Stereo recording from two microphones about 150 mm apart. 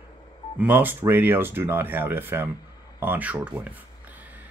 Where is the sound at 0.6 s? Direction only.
10° right (ahead or behind).